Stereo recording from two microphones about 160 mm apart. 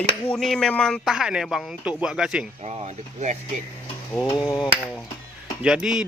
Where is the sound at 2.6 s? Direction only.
45° right (ahead or behind).